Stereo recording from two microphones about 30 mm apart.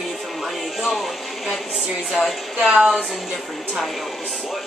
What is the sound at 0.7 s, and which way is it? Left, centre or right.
A woman's voice, centre.